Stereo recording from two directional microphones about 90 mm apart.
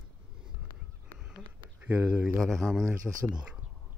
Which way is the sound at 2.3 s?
Centre (ahead or behind).